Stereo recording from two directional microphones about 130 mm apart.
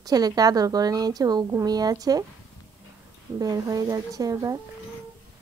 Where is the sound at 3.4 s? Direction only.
30° right (ahead or behind).